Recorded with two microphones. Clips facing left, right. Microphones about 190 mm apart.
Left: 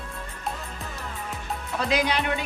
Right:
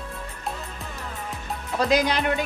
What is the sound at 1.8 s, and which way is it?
Speech, 40° right (ahead or behind).